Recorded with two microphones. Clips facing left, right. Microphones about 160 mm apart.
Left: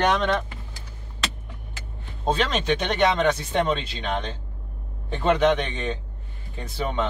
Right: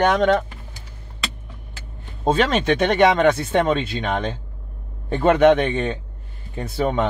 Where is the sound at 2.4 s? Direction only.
55° right (ahead or behind).